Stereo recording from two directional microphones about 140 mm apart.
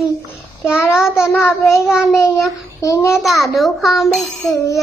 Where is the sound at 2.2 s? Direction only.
20° left (ahead or behind).